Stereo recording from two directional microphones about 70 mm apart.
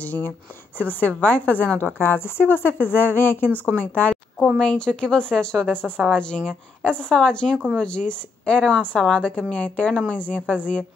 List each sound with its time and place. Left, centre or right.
0.7 s a woman's voice: left
4.6 s a woman's voice: centre